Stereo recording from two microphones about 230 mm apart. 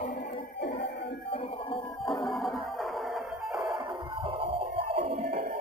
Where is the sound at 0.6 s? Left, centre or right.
Left.